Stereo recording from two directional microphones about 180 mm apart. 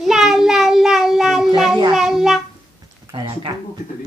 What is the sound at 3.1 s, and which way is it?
Speech, 25° right (ahead or behind).